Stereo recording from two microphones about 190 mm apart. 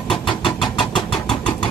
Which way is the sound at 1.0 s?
Centre (ahead or behind).